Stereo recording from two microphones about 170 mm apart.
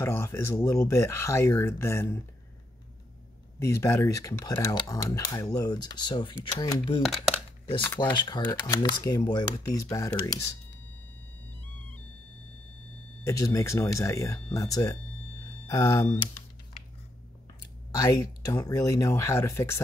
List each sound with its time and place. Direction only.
0.0 s speech: 15° left (ahead or behind)
3.5 s speech: 15° left (ahead or behind)
7.0 s speech: centre (ahead or behind)
8.0 s speech: 25° left (ahead or behind)
13.2 s speech: 20° left (ahead or behind)
17.9 s speech: 20° left (ahead or behind)